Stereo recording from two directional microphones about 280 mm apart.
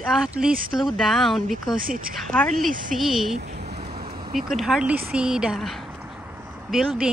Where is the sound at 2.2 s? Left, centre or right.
Centre.